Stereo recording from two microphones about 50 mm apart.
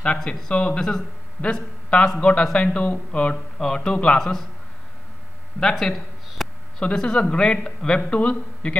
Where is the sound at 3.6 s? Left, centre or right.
Centre.